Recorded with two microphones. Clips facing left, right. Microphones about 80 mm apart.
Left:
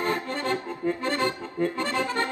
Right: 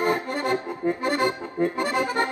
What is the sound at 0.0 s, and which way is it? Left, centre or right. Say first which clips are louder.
Accordion: right 3 dB; centre.